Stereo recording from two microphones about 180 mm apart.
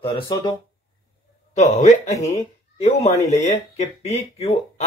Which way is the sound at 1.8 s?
40° left (ahead or behind).